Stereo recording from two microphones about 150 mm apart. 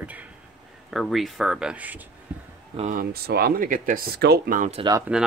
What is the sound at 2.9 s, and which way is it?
Speech, 90° right.